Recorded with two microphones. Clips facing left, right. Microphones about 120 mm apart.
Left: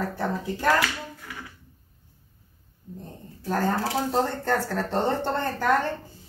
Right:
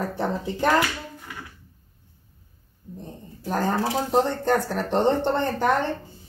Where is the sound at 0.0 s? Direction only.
20° right (ahead or behind).